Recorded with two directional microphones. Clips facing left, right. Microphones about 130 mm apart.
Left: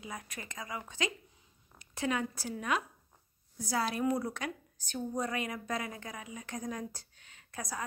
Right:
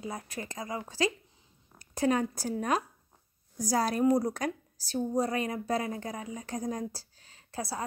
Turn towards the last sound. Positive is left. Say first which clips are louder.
# right 4 dB
turn(degrees=-30)  # may be behind; listen again after turning